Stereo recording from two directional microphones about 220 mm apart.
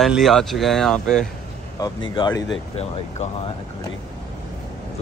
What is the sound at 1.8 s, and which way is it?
Speech, 20° left (ahead or behind).